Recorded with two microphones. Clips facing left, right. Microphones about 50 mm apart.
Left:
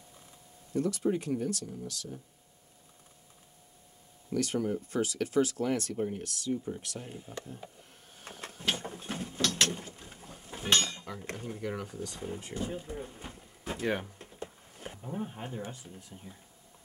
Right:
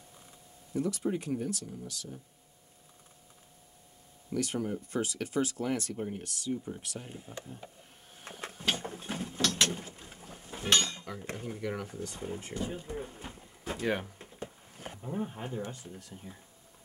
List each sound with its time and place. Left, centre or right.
1.0 s speech: centre
4.3 s speech: centre
6.5 s speech: centre
7.4 s a sound: centre
8.6 s mechanisms: centre
11.9 s a sound: centre
15.6 s speech: centre
16.3 s speech: centre